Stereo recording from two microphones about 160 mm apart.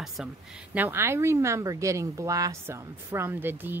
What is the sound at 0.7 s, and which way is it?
Speech, 15° right (ahead or behind).